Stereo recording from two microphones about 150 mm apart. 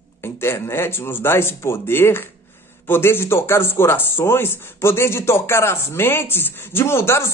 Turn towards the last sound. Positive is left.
turn(degrees=15)  # may be behind; listen again after turning